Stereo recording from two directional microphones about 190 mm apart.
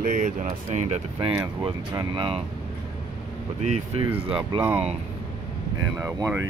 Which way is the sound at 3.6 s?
35° right (ahead or behind).